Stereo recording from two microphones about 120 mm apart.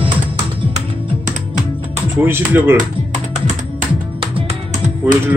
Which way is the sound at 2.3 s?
20° right (ahead or behind).